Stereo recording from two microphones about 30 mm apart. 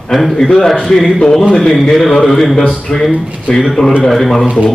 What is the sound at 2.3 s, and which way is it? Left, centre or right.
Speech, centre.